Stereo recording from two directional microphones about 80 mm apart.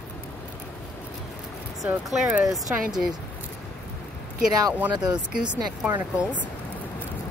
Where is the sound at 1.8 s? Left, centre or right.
Centre.